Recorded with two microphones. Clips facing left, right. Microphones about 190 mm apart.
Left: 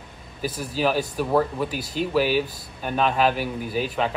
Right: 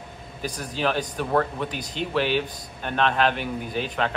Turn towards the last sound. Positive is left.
turn(degrees=5)  # may be behind; listen again after turning